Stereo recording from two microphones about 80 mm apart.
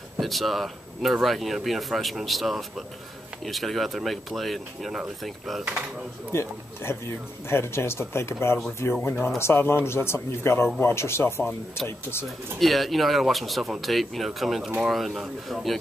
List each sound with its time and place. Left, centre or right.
0.2 s speech: centre
6.3 s speech: left
12.5 s speech: centre